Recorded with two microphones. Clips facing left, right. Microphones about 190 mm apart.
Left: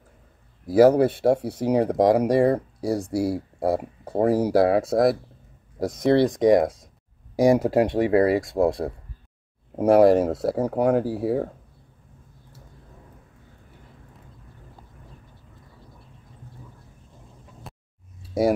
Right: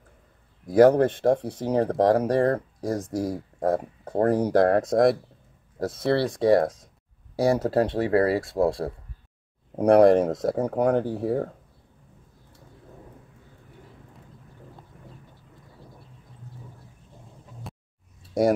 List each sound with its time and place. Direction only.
0.7 s speech: 5° left (ahead or behind)
5.8 s speech: 15° left (ahead or behind)
9.8 s speech: 5° left (ahead or behind)
17.6 s a sound: centre (ahead or behind)